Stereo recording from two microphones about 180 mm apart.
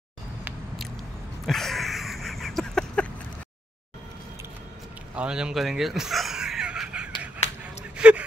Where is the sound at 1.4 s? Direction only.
Centre (ahead or behind).